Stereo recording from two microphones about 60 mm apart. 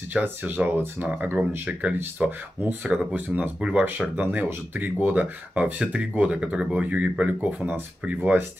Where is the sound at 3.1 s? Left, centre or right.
Right.